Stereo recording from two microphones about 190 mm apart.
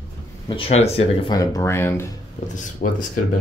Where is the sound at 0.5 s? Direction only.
30° left (ahead or behind).